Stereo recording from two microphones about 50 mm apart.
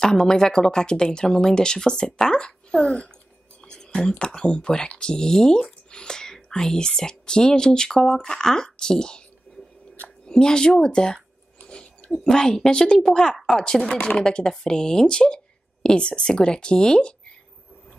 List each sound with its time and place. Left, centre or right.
0.0 s speech: centre
3.6 s whispering: centre
4.1 s speech: centre
11.6 s chewing: centre
12.1 s speech: centre